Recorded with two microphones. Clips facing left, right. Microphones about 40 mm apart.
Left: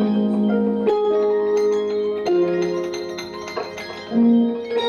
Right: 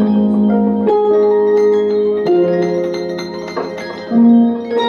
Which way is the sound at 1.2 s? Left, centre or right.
Right.